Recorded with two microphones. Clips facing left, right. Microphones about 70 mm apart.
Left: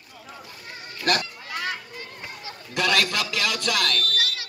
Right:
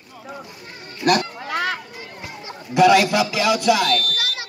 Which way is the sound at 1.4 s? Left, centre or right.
Right.